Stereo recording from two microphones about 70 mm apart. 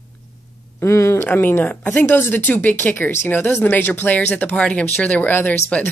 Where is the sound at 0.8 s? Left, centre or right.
Left.